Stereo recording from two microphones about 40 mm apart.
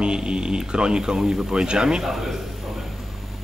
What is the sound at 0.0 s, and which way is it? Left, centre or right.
A man's voice, right.